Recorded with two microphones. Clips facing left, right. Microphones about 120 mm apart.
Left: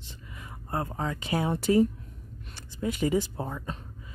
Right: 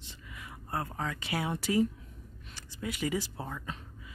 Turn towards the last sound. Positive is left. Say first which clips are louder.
# left 6 dB
turn(degrees=30)  # may be behind; listen again after turning